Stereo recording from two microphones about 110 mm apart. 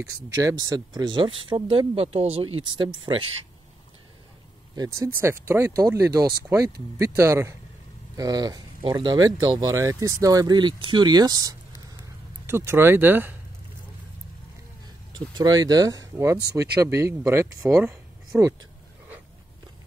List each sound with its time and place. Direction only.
0.0 s speech: 30° right (ahead or behind); by 3.3 s 50° right (ahead or behind)
4.7 s speech: 30° right (ahead or behind)
8.2 s speech: 35° right (ahead or behind)
12.4 s speech: 20° right (ahead or behind)
15.1 s speech: 40° right (ahead or behind); by 18.5 s 20° right (ahead or behind)